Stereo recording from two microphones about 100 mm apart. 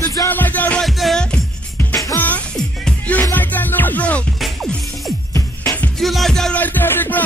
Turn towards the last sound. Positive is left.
turn(degrees=20)  # may be behind; listen again after turning